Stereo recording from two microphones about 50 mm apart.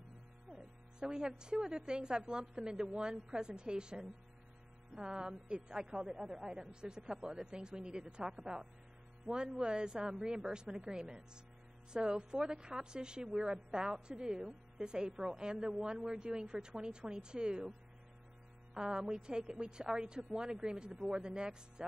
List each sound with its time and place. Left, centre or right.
0.5 s a woman's voice: centre
18.8 s a woman's voice: centre